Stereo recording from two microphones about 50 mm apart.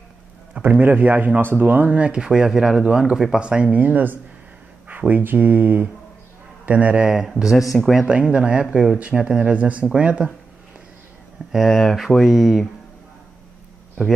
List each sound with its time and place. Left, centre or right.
0.7 s speech: right
2.0 s speech: right
3.3 s speech: centre
3.8 s a man's voice: right
7.1 s speech: centre
8.1 s speech: right
11.5 s speech: centre